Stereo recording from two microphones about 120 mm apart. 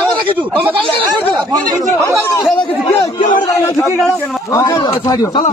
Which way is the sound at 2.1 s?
20° left (ahead or behind).